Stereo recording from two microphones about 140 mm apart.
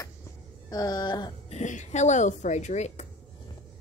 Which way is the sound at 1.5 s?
60° left (ahead or behind).